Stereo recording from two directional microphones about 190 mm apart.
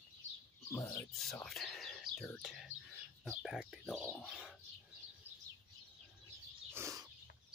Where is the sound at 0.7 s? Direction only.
15° left (ahead or behind).